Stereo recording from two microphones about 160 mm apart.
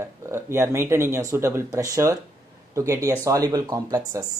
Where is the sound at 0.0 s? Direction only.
15° right (ahead or behind).